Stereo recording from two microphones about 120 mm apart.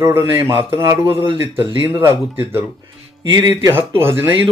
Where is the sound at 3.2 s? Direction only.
35° right (ahead or behind).